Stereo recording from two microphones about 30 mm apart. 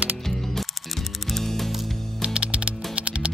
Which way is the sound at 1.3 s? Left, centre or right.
Centre.